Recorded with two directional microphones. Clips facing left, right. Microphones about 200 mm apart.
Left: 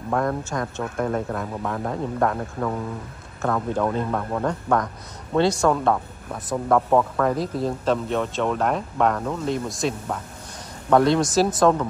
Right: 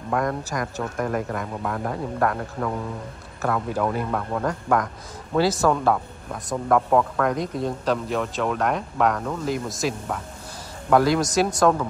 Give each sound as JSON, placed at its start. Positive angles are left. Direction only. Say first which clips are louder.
{"t": 0.1, "sound": "speech", "louder": "left 1 dB", "side_deg": 0}